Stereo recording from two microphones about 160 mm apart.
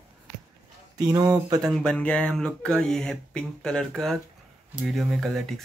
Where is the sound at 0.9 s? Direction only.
25° right (ahead or behind).